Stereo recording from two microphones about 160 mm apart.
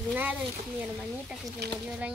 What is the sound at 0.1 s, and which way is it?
Speech, 10° right (ahead or behind).